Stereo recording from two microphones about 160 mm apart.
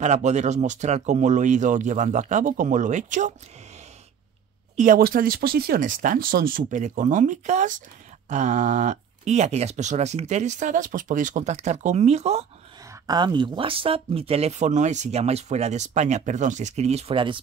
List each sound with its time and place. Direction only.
0.0 s speech: 45° right (ahead or behind)
4.7 s speech: 60° right (ahead or behind); by 12.4 s 45° right (ahead or behind)
13.0 s speech: 25° right (ahead or behind)